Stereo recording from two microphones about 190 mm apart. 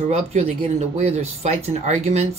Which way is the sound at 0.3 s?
35° right (ahead or behind).